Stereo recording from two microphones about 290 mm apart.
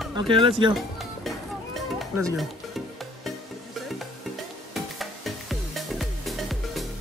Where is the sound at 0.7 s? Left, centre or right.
Centre.